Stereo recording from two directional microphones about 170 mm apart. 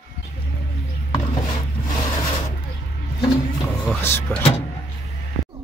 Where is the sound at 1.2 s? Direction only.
45° left (ahead or behind).